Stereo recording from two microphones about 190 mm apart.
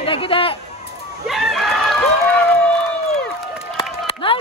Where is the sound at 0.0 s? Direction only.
30° left (ahead or behind).